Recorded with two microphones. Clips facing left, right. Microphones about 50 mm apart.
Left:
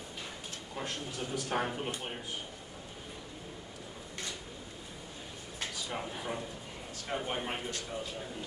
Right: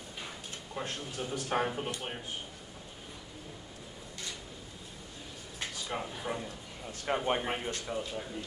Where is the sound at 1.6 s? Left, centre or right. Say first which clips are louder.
Right 2 dB; centre.